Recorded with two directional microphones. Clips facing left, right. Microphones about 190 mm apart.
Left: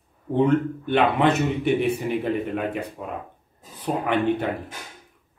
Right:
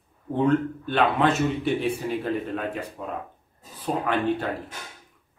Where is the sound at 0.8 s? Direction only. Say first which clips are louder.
Left 3 dB; 20° left (ahead or behind).